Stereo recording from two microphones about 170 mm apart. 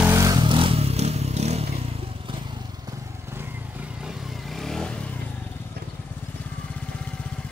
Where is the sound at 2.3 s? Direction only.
30° right (ahead or behind).